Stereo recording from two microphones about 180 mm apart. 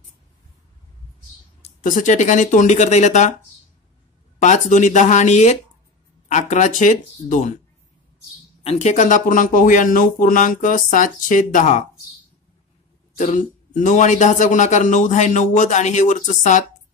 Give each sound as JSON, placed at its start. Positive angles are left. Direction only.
{"t": 1.6, "sound": "a man's voice", "side_deg": 45}
{"t": 4.4, "sound": "a man's voice", "side_deg": 40}
{"t": 8.6, "sound": "a man's voice", "side_deg": 40}
{"t": 13.2, "sound": "a man's voice", "side_deg": 45}